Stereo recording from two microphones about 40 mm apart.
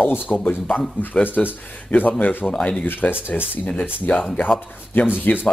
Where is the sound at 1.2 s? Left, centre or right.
Left.